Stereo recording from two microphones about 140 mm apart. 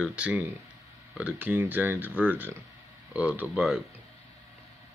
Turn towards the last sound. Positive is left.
turn(degrees=-10)  # may be behind; listen again after turning